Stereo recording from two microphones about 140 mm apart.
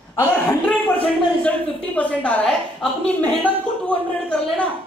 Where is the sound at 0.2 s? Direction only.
15° left (ahead or behind).